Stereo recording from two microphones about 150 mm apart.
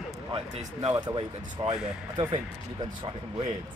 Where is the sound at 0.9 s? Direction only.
30° right (ahead or behind).